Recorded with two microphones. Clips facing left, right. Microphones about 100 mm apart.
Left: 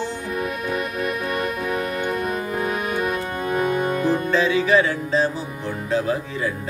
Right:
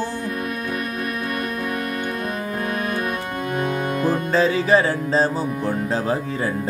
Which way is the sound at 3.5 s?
10° left (ahead or behind).